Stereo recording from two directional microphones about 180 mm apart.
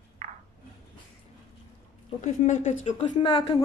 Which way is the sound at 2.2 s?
45° left (ahead or behind).